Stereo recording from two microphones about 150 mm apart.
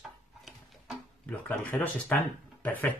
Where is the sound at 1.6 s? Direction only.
10° left (ahead or behind).